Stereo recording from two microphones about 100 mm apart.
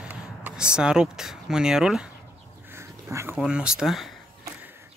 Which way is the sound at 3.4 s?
10° right (ahead or behind).